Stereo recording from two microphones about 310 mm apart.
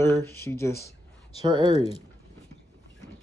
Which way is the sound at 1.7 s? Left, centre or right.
Centre.